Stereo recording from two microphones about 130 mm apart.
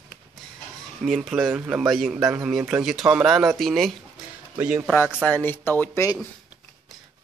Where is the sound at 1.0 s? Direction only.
Centre (ahead or behind).